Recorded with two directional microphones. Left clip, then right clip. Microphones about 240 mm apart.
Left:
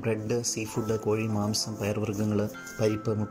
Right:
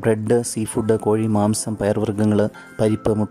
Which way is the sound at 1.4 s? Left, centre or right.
Right.